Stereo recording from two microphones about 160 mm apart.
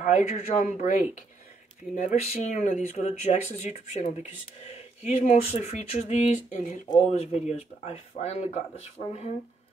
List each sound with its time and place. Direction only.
0.0 s speech: 55° left (ahead or behind)